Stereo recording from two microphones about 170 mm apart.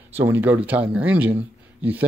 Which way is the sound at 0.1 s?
10° right (ahead or behind).